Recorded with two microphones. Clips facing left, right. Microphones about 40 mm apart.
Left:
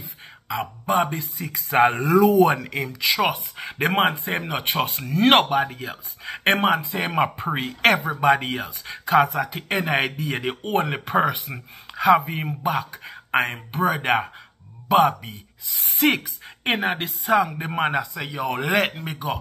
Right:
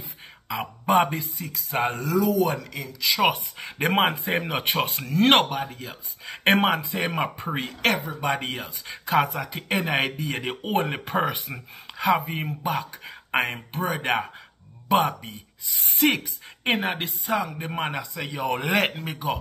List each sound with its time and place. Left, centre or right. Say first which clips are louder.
0.5 s speech: even; centre
1.7 s speech: left 7 dB; left
3.5 s speech: left 1 dB; centre